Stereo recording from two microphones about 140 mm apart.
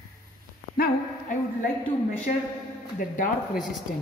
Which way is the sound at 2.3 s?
70° left (ahead or behind).